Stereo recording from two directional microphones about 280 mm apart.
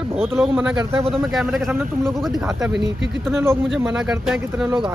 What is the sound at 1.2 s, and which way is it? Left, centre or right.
Speech, centre.